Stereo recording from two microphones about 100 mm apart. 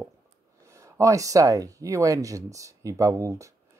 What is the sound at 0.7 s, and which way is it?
Speech, 30° right (ahead or behind).